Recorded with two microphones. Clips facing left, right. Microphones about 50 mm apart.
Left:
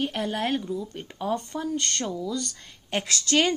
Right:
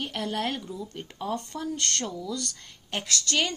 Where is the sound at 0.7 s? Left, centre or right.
Centre.